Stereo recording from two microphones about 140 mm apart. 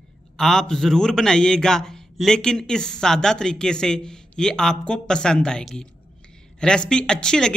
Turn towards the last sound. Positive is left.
turn(degrees=5)  # may be behind; listen again after turning